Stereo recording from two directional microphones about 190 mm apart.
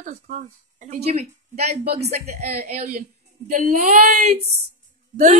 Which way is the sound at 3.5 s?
45° right (ahead or behind).